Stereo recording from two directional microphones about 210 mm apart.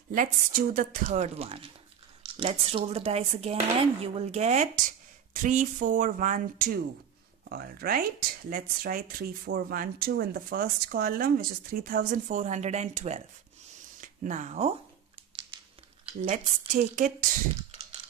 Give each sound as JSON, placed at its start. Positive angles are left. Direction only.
{"t": 0.1, "sound": "speech", "side_deg": -40}
{"t": 16.1, "sound": "speech", "side_deg": -40}